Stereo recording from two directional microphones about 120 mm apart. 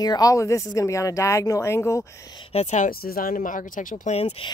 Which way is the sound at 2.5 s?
70° left (ahead or behind).